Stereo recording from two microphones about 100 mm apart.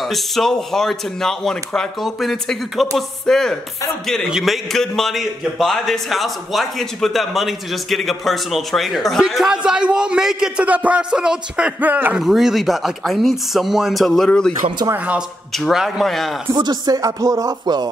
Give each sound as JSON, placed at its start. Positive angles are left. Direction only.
{"t": 0.0, "sound": "a man's voice", "side_deg": 0}
{"t": 12.2, "sound": "a man's voice", "side_deg": -5}
{"t": 15.5, "sound": "a man's voice", "side_deg": 0}
{"t": 16.5, "sound": "music", "side_deg": -40}